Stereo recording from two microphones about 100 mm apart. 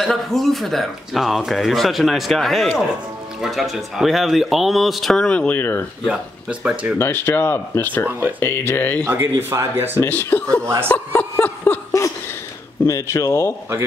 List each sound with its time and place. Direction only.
0.0 s speech: centre (ahead or behind); by 5.9 s 20° left (ahead or behind)
6.0 s speech: 10° right (ahead or behind)
7.0 s speech: 25° left (ahead or behind)
8.1 s speech: 20° right (ahead or behind)
8.4 s speech: 20° left (ahead or behind)
9.0 s speech: 25° right (ahead or behind)
9.9 s speech: 20° left (ahead or behind)
11.4 s chuckle: 20° left (ahead or behind)
12.8 s speech: 30° left (ahead or behind)